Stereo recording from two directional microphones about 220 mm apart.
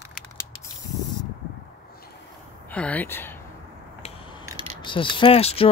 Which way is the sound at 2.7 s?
5° left (ahead or behind).